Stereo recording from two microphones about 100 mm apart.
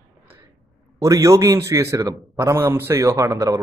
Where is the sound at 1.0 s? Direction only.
35° right (ahead or behind).